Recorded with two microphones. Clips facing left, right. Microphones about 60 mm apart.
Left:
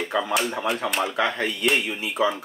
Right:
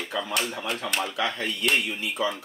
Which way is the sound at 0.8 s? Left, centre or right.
Centre.